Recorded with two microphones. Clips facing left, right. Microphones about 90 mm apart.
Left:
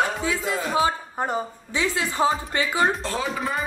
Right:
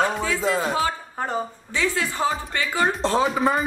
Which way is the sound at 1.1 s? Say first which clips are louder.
Even; 15° left (ahead or behind).